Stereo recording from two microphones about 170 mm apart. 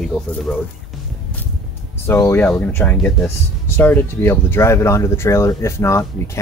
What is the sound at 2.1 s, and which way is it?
Speech, 15° left (ahead or behind).